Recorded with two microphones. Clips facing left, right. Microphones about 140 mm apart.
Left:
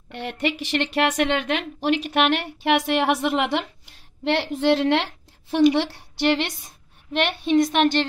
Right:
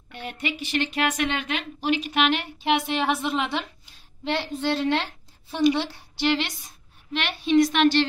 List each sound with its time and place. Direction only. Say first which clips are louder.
0.1 s a woman's voice: left 5 dB; 80° left
5.8 s a woman's voice: left 4 dB; 60° left (ahead or behind)